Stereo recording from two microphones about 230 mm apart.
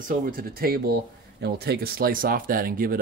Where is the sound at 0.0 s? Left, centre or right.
Right.